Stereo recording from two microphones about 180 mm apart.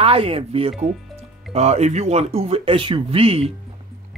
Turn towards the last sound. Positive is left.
turn(degrees=-30)  # may be behind; listen again after turning